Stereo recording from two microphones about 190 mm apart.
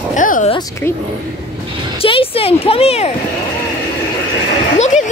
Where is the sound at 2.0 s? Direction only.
30° left (ahead or behind).